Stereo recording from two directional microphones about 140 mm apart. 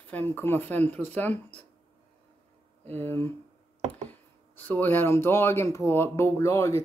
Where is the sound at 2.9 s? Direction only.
15° left (ahead or behind).